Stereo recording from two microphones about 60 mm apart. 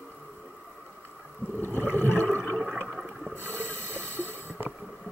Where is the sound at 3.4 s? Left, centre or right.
Left.